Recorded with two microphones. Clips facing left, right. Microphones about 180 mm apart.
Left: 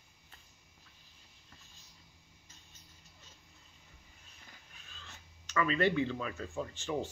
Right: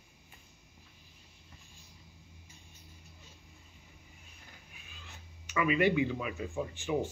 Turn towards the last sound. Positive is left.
turn(degrees=-15)  # may be behind; listen again after turning